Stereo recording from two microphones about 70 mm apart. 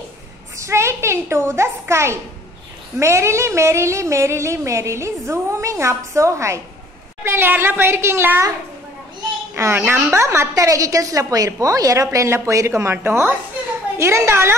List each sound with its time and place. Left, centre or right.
0.6 s a child's voice: right
3.0 s a sound: right
7.2 s a woman's voice: right
9.6 s a woman's voice: right
10.1 s a sound: right
13.9 s a woman's voice: right